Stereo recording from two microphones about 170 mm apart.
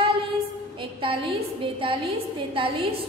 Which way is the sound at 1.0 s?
30° right (ahead or behind).